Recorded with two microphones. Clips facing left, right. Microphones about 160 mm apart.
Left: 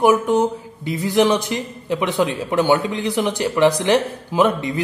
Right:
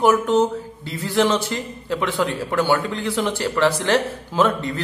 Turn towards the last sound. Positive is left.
turn(degrees=15)  # may be behind; listen again after turning